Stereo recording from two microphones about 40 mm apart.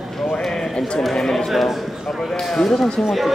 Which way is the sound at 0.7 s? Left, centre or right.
Centre.